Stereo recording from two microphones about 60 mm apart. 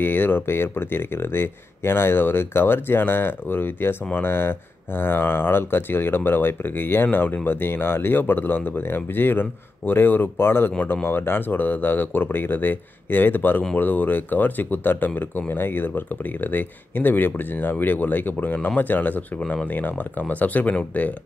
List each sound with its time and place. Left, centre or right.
0.0 s speech: left
19.4 s speech: centre
19.7 s speech: left